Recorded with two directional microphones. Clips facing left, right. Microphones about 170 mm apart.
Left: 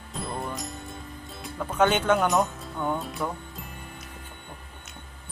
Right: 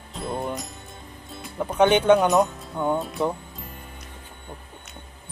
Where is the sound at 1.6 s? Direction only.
20° right (ahead or behind).